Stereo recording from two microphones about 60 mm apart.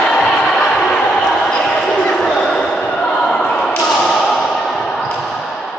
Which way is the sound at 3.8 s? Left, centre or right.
Centre.